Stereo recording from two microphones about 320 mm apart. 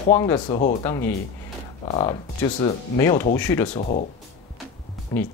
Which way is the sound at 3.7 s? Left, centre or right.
Left.